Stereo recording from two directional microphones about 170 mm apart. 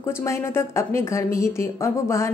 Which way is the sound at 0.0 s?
15° left (ahead or behind).